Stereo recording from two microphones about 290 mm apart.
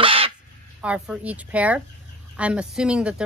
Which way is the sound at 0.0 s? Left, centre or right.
Centre.